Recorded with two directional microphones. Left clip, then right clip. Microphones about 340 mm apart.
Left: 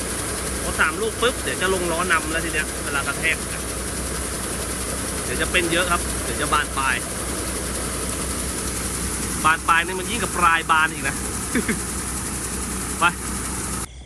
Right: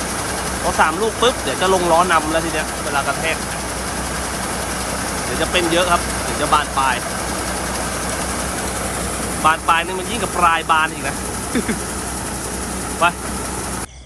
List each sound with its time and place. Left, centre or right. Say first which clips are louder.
0.7 s speech: right 4 dB; centre
5.4 s speech: right 4 dB; centre
9.4 s speech: right 3 dB; centre
13.0 s speech: right 3 dB; centre